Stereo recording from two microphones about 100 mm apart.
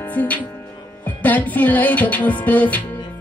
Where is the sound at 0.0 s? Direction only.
15° left (ahead or behind).